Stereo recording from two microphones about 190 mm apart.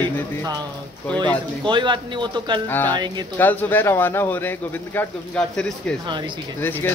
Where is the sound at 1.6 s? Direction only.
25° right (ahead or behind).